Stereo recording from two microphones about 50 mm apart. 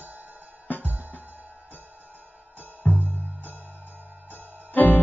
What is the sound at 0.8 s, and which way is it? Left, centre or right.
Music, right.